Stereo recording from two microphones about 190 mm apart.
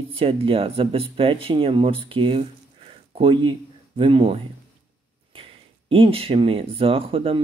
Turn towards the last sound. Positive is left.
turn(degrees=-30)  # may be behind; listen again after turning